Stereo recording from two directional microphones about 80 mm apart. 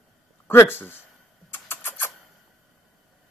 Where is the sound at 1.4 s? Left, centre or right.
Left.